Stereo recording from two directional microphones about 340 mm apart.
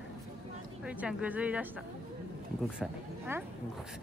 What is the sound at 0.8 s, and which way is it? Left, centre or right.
Speech, centre.